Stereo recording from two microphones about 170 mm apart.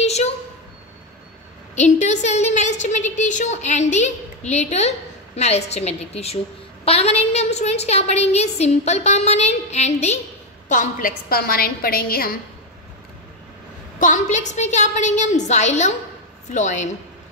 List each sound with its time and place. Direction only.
0.0 s a sound: 40° left (ahead or behind)
1.8 s a woman's voice: 45° left (ahead or behind); by 12.4 s 60° left (ahead or behind)
13.9 s a woman's voice: 45° left (ahead or behind)